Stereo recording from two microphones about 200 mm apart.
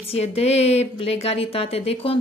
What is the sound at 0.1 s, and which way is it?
Speech, 30° left (ahead or behind).